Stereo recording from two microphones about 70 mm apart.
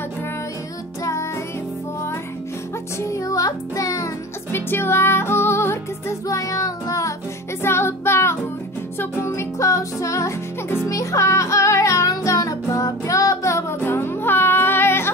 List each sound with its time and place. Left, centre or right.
3.0 s music: left
4.5 s music: left
6.2 s music: left
7.6 s music: left